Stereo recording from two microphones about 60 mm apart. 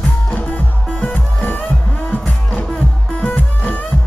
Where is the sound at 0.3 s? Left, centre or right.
Left.